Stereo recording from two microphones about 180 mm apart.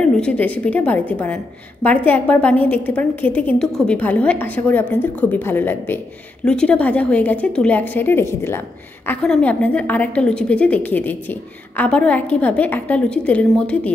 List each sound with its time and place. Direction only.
0.0 s a woman's voice: 5° left (ahead or behind)